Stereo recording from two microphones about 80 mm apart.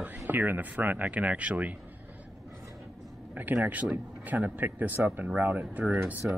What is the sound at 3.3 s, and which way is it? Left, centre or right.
Speech, right.